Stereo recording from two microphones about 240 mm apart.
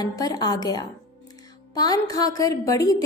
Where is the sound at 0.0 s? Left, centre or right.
Centre.